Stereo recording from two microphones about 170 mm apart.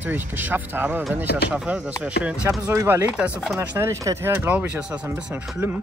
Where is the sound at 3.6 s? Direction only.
15° right (ahead or behind).